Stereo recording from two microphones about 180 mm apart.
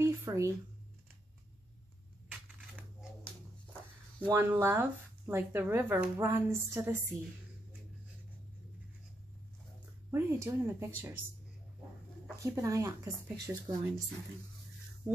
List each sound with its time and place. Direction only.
0.0 s a sound: 15° right (ahead or behind)
4.3 s speech: 15° right (ahead or behind)
10.1 s speech: 10° right (ahead or behind)
12.4 s speech: 15° right (ahead or behind)